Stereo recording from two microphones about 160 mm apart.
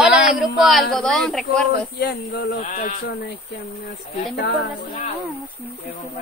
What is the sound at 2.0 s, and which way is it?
Speech, 85° left.